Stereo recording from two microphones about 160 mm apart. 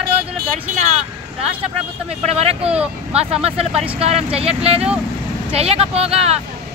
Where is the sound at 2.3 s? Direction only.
40° right (ahead or behind).